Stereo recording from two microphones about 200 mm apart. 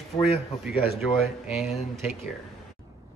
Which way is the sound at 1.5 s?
Centre (ahead or behind).